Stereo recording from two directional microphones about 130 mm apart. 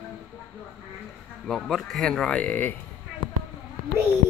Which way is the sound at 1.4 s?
Centre (ahead or behind).